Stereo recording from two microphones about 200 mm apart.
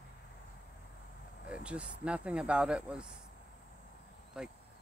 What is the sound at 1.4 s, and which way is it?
Speech, 5° right (ahead or behind).